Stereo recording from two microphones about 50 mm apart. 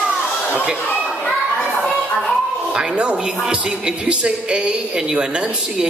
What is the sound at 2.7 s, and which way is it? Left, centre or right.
Music, centre.